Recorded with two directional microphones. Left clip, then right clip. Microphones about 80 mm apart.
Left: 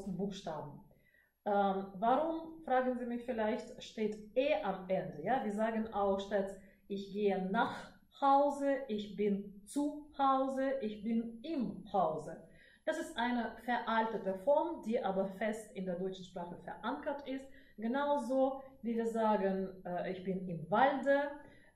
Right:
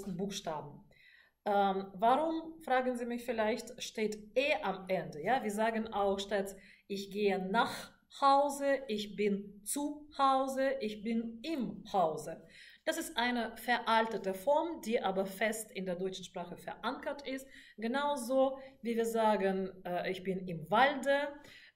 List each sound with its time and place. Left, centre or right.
0.3 s a woman's voice: right